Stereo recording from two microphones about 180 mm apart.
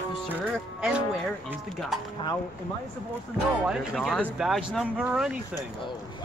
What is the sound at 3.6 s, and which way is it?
Speech, centre (ahead or behind).